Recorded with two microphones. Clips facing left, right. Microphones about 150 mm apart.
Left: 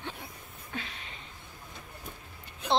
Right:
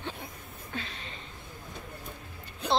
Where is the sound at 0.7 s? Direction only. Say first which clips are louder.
Right 1 dB; 10° left (ahead or behind).